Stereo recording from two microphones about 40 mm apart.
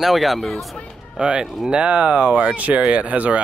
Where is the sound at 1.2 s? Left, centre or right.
Right.